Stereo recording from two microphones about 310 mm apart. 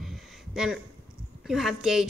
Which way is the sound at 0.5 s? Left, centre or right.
Centre.